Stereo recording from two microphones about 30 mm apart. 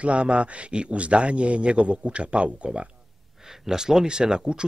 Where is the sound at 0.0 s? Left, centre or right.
Right.